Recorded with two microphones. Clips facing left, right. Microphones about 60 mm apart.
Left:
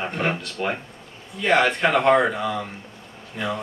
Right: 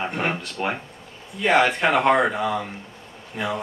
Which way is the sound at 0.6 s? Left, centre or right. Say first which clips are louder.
Even; centre.